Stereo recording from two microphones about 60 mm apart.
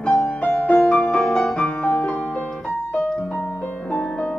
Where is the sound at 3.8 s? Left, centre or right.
Centre.